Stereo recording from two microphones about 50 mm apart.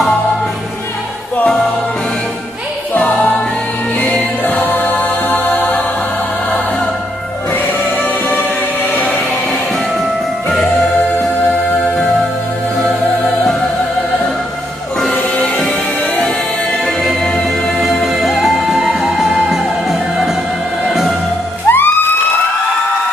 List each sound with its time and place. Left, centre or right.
3.0 s music: left
8.0 s music: left
15.0 s music: centre
16.8 s music: centre
21.6 s music: left